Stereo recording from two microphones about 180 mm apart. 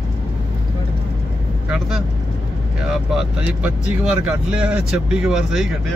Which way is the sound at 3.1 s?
5° right (ahead or behind).